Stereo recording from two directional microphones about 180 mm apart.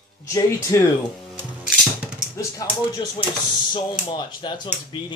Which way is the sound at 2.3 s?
20° left (ahead or behind).